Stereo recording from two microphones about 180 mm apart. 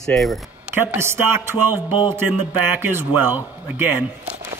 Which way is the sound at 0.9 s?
15° right (ahead or behind).